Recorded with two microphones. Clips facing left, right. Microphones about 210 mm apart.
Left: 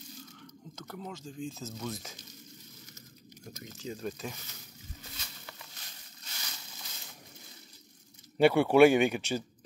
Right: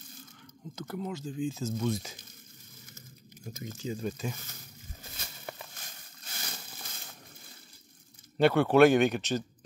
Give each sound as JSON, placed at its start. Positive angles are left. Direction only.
{"t": 0.7, "sound": "speech", "side_deg": -5}
{"t": 3.7, "sound": "speech", "side_deg": 0}
{"t": 5.1, "sound": "a sound", "side_deg": -55}
{"t": 6.3, "sound": "crumpling", "side_deg": -50}
{"t": 8.4, "sound": "speech", "side_deg": 10}